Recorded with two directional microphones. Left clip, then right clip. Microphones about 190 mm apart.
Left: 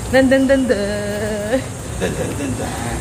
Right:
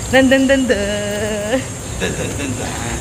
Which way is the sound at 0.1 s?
20° right (ahead or behind).